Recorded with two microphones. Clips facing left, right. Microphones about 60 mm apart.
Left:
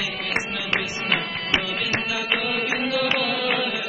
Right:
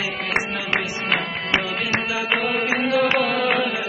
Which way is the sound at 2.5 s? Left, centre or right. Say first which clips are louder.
Right 4 dB; right.